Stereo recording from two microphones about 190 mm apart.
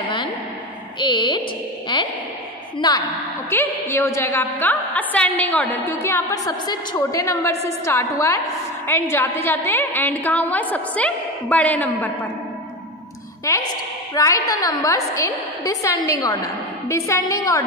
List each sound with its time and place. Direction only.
0.0 s a sound: 25° left (ahead or behind)
1.9 s speech: 25° left (ahead or behind)
3.4 s a woman's voice: 10° left (ahead or behind)
13.5 s a woman's voice: 15° left (ahead or behind)